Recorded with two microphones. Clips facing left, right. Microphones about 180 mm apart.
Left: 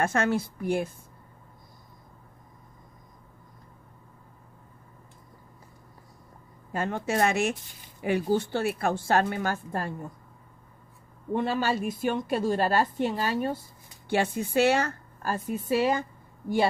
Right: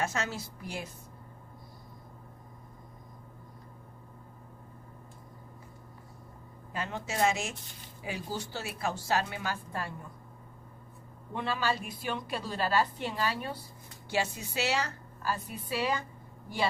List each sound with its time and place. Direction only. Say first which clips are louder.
0.0 s speech: left 8 dB; 55° left (ahead or behind)
6.7 s a woman's voice: left 8 dB; 50° left (ahead or behind)
11.3 s a woman's voice: left 6 dB; 50° left (ahead or behind)